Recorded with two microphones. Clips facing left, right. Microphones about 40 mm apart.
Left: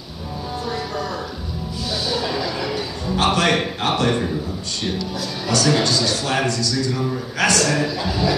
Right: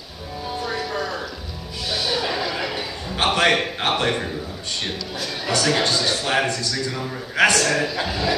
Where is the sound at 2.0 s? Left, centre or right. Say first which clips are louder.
Left 1 dB; right.